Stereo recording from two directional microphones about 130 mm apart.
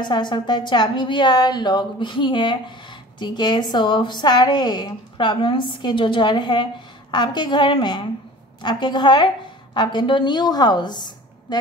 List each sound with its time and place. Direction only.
0.0 s a woman's voice: 35° left (ahead or behind)